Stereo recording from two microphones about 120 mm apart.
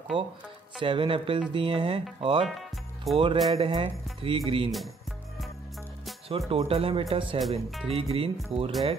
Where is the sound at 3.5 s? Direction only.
50° right (ahead or behind).